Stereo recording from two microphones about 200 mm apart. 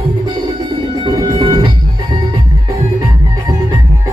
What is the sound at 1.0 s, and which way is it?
Music, 25° right (ahead or behind).